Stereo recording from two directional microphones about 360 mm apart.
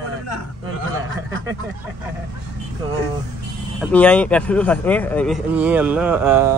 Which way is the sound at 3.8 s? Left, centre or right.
Centre.